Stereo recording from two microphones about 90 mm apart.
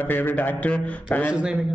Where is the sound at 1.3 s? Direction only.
10° right (ahead or behind).